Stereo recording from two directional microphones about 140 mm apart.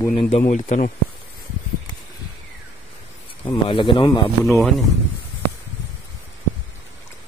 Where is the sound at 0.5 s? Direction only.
60° left (ahead or behind).